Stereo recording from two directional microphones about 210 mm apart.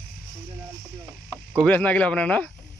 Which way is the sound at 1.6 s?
5° left (ahead or behind).